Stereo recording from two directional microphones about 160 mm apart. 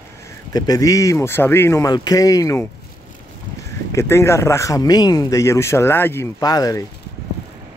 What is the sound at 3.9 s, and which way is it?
Speech, 15° left (ahead or behind).